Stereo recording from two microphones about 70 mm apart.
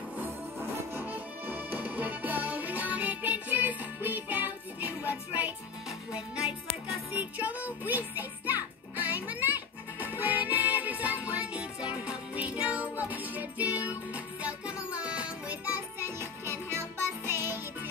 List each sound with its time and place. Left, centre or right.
1.0 s music: right
7.2 s music: right
16.0 s music: right